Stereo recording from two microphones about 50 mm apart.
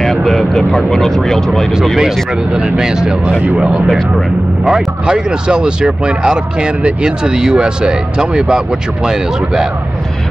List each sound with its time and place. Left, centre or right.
0.0 s speech: centre
2.0 s speech: centre
3.3 s speech: right
3.5 s speech: centre